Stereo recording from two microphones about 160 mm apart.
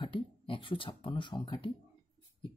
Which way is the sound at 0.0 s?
30° left (ahead or behind).